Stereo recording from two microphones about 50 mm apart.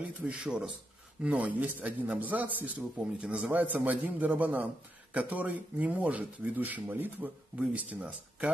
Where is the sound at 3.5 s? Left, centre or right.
Right.